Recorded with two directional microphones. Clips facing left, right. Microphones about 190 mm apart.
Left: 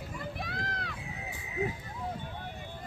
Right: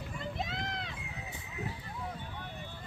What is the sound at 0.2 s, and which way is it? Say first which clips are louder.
Run: right 2 dB; 20° right (ahead or behind).